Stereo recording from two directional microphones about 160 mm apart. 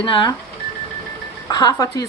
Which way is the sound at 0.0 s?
30° left (ahead or behind).